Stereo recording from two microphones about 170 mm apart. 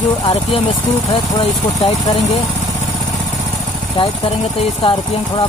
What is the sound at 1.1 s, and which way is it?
Speech, 30° left (ahead or behind).